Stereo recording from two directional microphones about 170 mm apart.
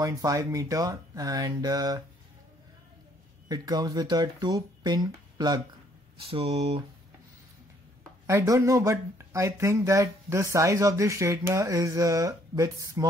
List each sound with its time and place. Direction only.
0.0 s speech: 20° right (ahead or behind)
3.4 s speech: 20° right (ahead or behind)
6.2 s speech: 35° right (ahead or behind)
8.3 s speech: 15° right (ahead or behind)